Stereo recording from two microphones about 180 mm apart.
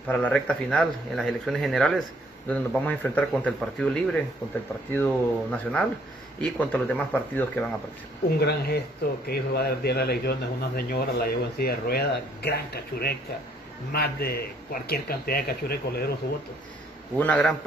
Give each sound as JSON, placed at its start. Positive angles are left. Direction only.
{"t": 0.1, "sound": "speech", "side_deg": 5}
{"t": 8.4, "sound": "speech", "side_deg": 60}
{"t": 17.2, "sound": "speech", "side_deg": 5}